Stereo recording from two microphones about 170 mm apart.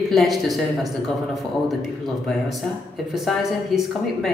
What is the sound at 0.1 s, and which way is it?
A woman's voice, centre (ahead or behind).